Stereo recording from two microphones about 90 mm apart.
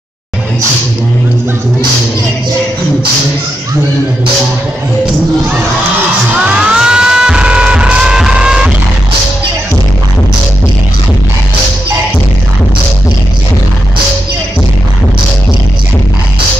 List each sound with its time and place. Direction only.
6.6 s music: 10° right (ahead or behind)